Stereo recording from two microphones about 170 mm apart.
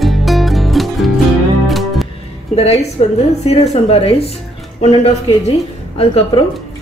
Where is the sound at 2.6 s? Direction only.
35° left (ahead or behind).